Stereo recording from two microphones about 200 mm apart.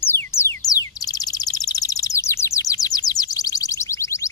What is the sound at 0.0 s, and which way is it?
Bird, 10° left (ahead or behind).